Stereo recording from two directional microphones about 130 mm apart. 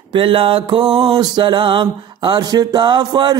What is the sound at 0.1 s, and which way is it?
Mantra, 40° right (ahead or behind).